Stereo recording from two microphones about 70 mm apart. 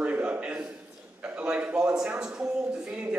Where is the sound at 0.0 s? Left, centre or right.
Centre.